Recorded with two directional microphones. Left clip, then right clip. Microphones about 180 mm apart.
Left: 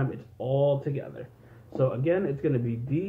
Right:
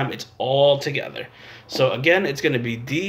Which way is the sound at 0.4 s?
40° right (ahead or behind).